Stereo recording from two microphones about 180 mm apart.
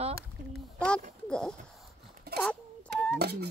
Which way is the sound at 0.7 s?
5° left (ahead or behind).